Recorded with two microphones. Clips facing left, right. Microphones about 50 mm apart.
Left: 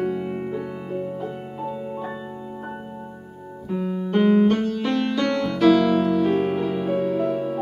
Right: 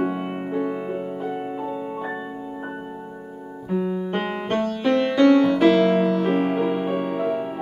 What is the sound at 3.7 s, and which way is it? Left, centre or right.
Piano, centre.